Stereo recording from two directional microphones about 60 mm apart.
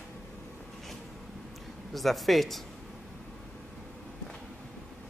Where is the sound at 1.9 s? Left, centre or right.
Centre.